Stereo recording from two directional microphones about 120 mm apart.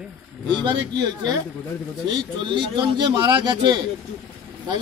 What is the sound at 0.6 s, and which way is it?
Speech, 40° right (ahead or behind).